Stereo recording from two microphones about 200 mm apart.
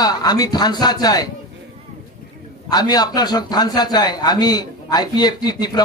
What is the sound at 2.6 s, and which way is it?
A man's voice, 20° left (ahead or behind).